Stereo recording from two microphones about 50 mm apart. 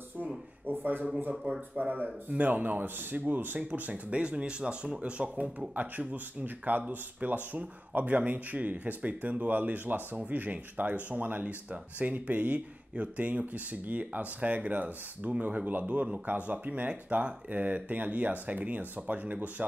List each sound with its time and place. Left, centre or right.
0.7 s a sound: right
1.3 s speech: centre
1.8 s speech: right
5.8 s speech: right